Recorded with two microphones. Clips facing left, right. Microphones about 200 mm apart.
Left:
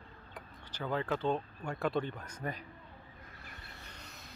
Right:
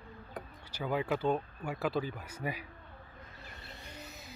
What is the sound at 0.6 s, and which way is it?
Speech, 10° right (ahead or behind).